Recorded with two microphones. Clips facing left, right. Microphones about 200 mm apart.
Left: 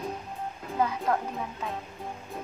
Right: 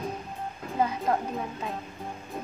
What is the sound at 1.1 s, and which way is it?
Speech, 25° right (ahead or behind).